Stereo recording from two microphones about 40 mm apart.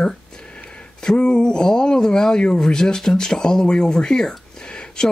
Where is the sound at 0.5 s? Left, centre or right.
Left.